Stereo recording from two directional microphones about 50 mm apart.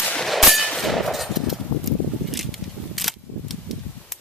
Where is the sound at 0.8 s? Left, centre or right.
Centre.